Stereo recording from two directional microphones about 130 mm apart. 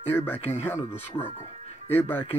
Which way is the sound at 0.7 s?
15° left (ahead or behind).